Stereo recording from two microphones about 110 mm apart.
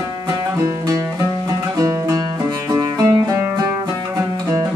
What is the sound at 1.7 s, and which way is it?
Music, 30° right (ahead or behind).